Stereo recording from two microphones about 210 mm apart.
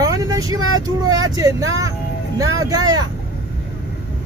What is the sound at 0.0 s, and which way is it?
Speech, 15° right (ahead or behind).